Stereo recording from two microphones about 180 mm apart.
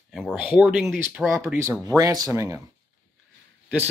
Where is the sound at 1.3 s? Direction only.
15° right (ahead or behind).